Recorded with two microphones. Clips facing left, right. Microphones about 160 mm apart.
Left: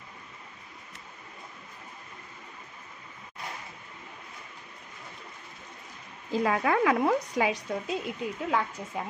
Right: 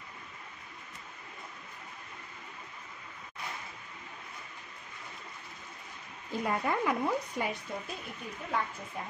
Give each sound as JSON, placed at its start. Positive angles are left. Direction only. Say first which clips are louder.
{"t": 6.3, "sound": "a woman's voice", "louder": "left 6 dB", "side_deg": 90}